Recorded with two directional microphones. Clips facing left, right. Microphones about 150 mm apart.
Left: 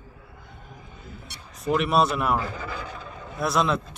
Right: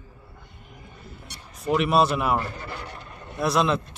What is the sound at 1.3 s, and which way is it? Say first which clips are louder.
A man's voice: right 1 dB; centre (ahead or behind).